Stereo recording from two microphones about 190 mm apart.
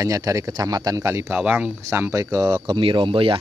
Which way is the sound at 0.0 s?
15° right (ahead or behind).